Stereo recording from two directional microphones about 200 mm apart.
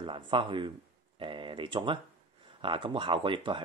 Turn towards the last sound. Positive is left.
turn(degrees=-25)  # may be behind; listen again after turning